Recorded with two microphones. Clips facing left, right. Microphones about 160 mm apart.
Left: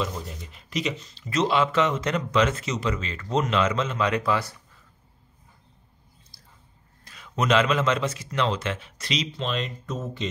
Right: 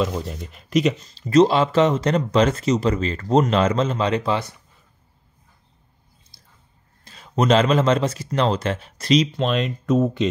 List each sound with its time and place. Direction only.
0.0 s speech: 60° right (ahead or behind); by 4.6 s 20° right (ahead or behind)
6.3 s a sound: 20° right (ahead or behind)
7.1 s speech: 35° right (ahead or behind)
9.4 s speech: 60° right (ahead or behind)